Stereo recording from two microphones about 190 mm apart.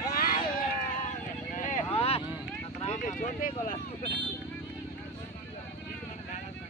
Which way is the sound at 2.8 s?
40° left (ahead or behind).